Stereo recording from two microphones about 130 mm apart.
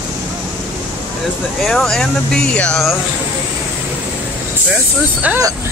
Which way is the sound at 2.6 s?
5° left (ahead or behind).